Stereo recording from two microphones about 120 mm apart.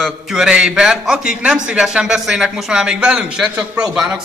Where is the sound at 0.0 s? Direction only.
5° right (ahead or behind).